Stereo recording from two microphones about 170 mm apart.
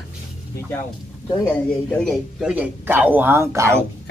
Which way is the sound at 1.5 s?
5° left (ahead or behind).